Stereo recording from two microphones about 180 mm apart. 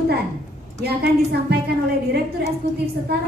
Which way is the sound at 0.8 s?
65° right (ahead or behind).